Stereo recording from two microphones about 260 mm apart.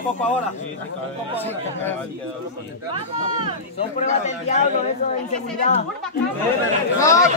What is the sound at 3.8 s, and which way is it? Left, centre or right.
Speech, left.